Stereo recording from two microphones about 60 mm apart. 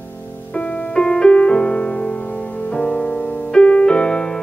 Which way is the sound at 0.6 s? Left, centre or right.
Left.